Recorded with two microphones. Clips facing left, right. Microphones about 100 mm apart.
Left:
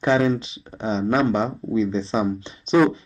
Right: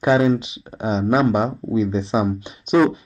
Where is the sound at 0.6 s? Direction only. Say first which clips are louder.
Right 2 dB; 15° right (ahead or behind).